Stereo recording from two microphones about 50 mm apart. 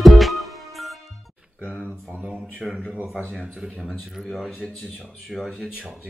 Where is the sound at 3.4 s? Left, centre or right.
Centre.